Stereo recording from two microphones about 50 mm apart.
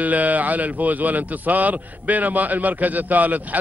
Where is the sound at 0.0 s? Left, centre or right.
Right.